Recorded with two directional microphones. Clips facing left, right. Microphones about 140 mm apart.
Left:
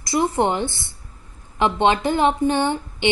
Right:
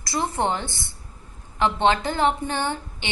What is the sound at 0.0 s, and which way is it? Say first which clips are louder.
A woman's voice: left 5 dB; 20° left (ahead or behind).